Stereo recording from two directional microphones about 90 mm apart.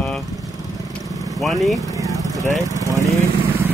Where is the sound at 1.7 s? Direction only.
40° right (ahead or behind).